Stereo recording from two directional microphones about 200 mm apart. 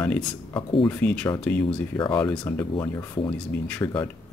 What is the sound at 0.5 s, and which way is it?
Speech, 25° left (ahead or behind).